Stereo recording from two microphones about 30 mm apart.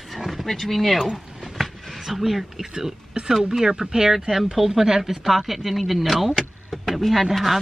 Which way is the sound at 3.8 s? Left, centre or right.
Right.